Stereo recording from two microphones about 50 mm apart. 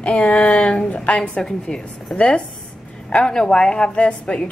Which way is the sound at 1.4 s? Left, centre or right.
Centre.